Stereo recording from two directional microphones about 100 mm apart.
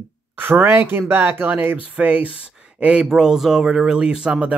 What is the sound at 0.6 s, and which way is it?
Speech, 20° right (ahead or behind).